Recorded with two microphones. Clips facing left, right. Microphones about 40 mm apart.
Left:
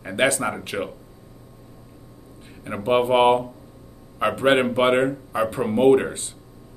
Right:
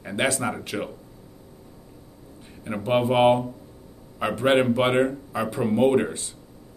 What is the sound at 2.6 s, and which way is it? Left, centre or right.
Speech, centre.